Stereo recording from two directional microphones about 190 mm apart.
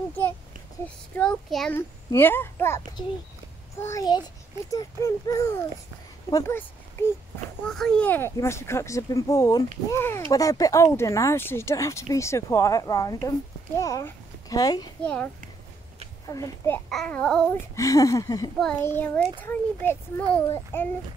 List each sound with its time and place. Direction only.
1.1 s speech: 5° left (ahead or behind)
3.8 s speech: 15° left (ahead or behind)
7.6 s speech: 5° left (ahead or behind); by 14.9 s 20° left (ahead or behind)
16.3 s speech: 15° left (ahead or behind)
16.9 s babbling: 5° left (ahead or behind)
17.7 s speech: 15° left (ahead or behind)